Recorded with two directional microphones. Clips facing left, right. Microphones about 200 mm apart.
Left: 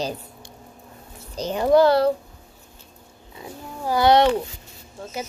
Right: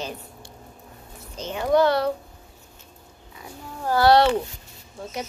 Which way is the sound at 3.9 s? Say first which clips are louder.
Even; 20° left (ahead or behind).